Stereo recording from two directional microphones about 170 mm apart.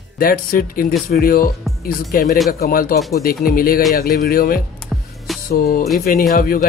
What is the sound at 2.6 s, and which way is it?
Speech, 60° left (ahead or behind).